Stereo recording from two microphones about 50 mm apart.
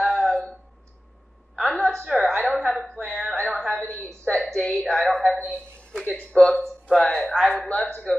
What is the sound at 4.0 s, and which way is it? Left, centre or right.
A woman's voice, centre.